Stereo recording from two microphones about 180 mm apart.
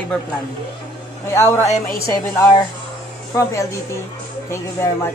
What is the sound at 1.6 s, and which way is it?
Speech, 40° left (ahead or behind).